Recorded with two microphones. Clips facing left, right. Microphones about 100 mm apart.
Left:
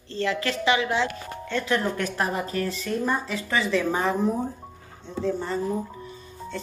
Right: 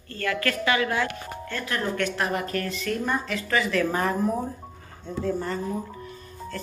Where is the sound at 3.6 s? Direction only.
Centre (ahead or behind).